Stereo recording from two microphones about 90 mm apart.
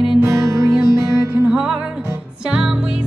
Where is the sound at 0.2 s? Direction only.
35° right (ahead or behind).